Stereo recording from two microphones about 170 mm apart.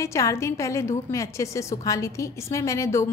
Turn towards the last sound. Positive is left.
turn(degrees=15)  # may be behind; listen again after turning